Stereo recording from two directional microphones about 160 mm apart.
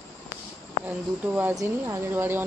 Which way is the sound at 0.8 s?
10° right (ahead or behind).